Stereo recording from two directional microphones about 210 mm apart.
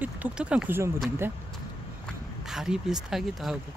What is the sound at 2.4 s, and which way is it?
Speech, centre (ahead or behind).